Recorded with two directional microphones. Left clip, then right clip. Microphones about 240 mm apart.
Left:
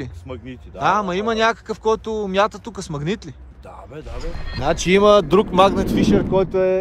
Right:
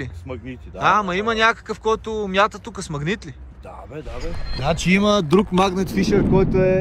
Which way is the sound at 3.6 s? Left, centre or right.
Centre.